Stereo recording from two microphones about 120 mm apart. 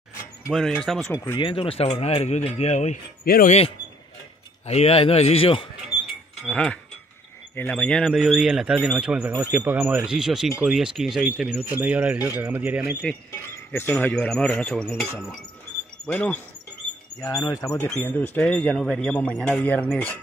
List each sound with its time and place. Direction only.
0.5 s speech: centre (ahead or behind)
1.1 s speech: 25° left (ahead or behind)
1.4 s speech: 50° left (ahead or behind); by 3.0 s 65° left (ahead or behind)
4.6 s speech: 60° left (ahead or behind)
6.4 s speech: 10° left (ahead or behind); by 12.9 s 15° right (ahead or behind)
13.7 s speech: 15° left (ahead or behind)
16.1 s speech: 10° left (ahead or behind)
17.2 s speech: 25° left (ahead or behind)
17.7 s speech: 10° left (ahead or behind)